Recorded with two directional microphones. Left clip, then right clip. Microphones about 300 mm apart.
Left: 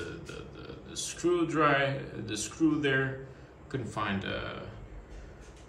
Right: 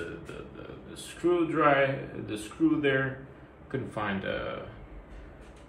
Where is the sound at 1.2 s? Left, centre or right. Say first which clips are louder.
Right 2 dB; centre.